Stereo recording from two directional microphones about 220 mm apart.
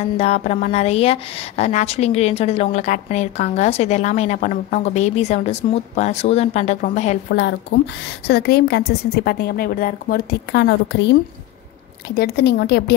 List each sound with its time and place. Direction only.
0.2 s a woman's voice: 30° left (ahead or behind)
7.2 s a woman's voice: 50° left (ahead or behind)
12.2 s a woman's voice: 45° left (ahead or behind)